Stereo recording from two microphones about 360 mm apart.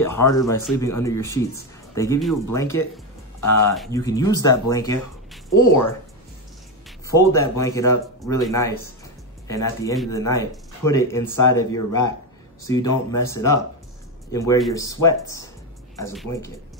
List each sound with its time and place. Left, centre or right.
0.1 s speech: centre
3.3 s speech: left
3.6 s speech: centre
5.5 s speech: left
7.2 s speech: centre